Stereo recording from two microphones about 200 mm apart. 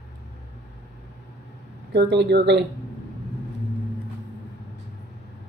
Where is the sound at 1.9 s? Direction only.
60° right (ahead or behind).